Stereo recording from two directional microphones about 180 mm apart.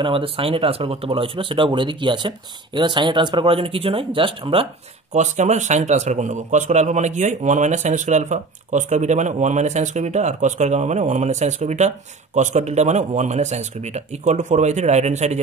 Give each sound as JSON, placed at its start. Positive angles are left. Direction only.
{"t": 0.0, "sound": "speech", "side_deg": -30}
{"t": 5.1, "sound": "a man's voice", "side_deg": -40}